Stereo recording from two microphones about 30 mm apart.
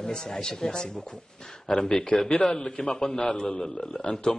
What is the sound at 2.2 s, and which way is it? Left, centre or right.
Speech, left.